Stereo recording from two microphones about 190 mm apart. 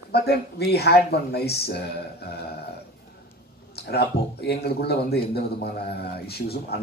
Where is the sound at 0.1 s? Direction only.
55° left (ahead or behind).